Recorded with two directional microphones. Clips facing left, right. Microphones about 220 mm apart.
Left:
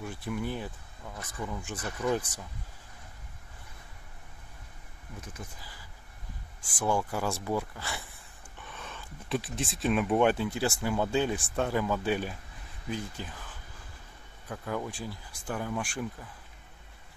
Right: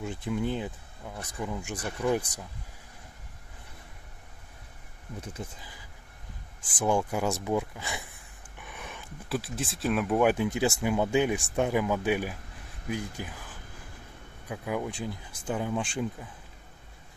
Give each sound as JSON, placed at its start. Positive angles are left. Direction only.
{"t": 0.0, "sound": "speech", "side_deg": -20}
{"t": 5.6, "sound": "speech", "side_deg": -20}
{"t": 8.5, "sound": "dog", "side_deg": -15}
{"t": 9.3, "sound": "speech", "side_deg": 0}
{"t": 10.3, "sound": "speech", "side_deg": -15}
{"t": 14.5, "sound": "speech", "side_deg": -10}